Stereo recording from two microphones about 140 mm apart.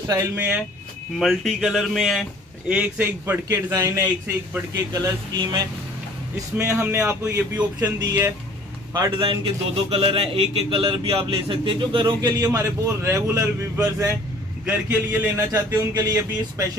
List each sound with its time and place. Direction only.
0.4 s a man's voice: 10° right (ahead or behind)
1.2 s a man's voice: centre (ahead or behind); by 5.6 s 30° right (ahead or behind)
6.3 s a man's voice: 20° right (ahead or behind)
8.9 s a man's voice: 30° right (ahead or behind)